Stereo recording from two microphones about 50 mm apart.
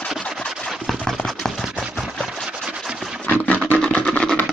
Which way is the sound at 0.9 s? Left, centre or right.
Centre.